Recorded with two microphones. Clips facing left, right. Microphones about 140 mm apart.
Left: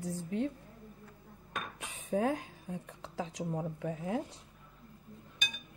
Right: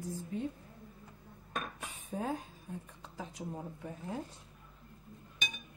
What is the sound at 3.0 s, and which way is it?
A woman's voice, 90° left.